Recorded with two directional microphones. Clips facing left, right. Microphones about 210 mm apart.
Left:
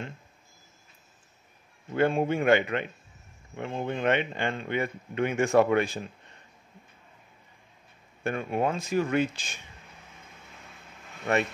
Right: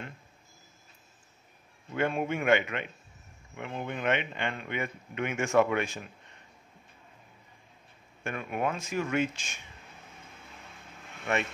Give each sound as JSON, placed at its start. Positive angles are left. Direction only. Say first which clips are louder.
{"t": 2.0, "sound": "speech", "louder": "left 5 dB", "side_deg": 30}
{"t": 8.2, "sound": "speech", "louder": "left 4 dB", "side_deg": 35}